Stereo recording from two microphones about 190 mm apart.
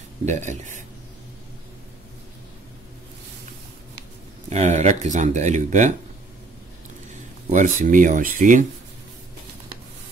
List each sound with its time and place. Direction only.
0.2 s speech: 40° right (ahead or behind)
4.5 s speech: 35° right (ahead or behind)
7.4 s speech: 40° right (ahead or behind)